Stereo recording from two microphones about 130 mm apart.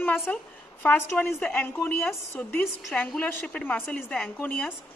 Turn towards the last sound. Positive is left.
turn(degrees=15)  # may be behind; listen again after turning